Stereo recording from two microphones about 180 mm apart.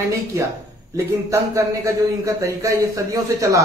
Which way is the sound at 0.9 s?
15° right (ahead or behind).